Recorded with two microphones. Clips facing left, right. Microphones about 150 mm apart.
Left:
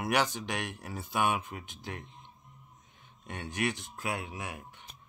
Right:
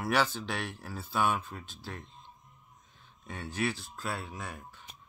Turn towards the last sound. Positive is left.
turn(degrees=20)  # may be behind; listen again after turning